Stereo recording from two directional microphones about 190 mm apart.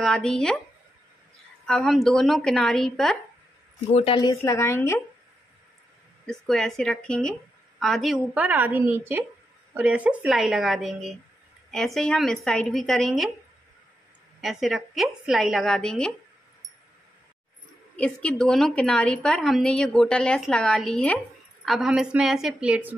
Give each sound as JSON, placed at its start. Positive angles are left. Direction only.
{"t": 0.0, "sound": "a woman's voice", "side_deg": 5}
{"t": 1.7, "sound": "a woman's voice", "side_deg": 0}
{"t": 3.9, "sound": "speech", "side_deg": 30}
{"t": 6.2, "sound": "a woman's voice", "side_deg": 0}
{"t": 14.4, "sound": "a woman's voice", "side_deg": 0}
{"t": 17.9, "sound": "a woman's voice", "side_deg": 5}